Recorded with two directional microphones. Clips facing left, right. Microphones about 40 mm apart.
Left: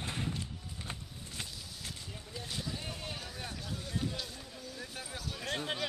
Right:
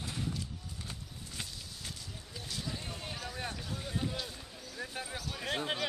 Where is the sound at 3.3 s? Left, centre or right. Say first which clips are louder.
Right 2 dB; centre.